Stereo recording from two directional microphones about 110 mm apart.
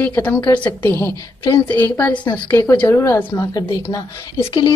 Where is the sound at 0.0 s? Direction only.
15° left (ahead or behind).